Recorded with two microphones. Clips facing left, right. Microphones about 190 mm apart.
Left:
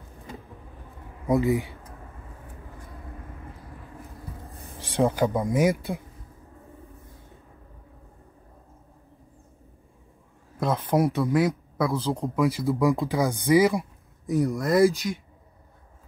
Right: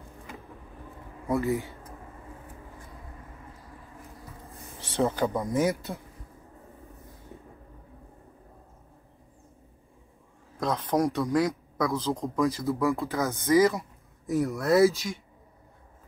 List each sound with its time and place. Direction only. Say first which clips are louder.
1.3 s speech: left 4 dB; 15° left (ahead or behind)
4.7 s speech: left 3 dB; 10° left (ahead or behind)
10.6 s speech: left 2 dB; 5° left (ahead or behind)
14.2 s speech: left 2 dB; centre (ahead or behind)